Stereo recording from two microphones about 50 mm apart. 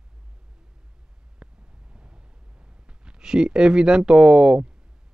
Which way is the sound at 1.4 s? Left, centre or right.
Centre.